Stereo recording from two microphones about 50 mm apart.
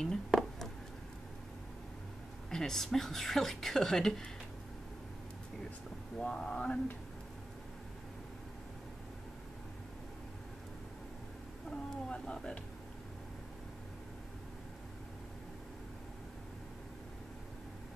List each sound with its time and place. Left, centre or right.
0.3 s a sound: centre
2.5 s speech: centre
6.1 s speech: centre
11.7 s speech: centre